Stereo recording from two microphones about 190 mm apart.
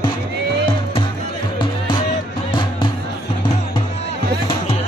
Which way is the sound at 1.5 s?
25° left (ahead or behind).